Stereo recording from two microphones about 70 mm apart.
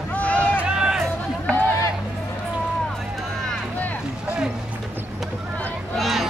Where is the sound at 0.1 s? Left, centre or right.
Left.